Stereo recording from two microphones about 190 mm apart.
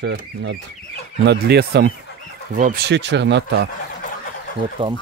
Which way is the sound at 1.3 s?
60° right (ahead or behind).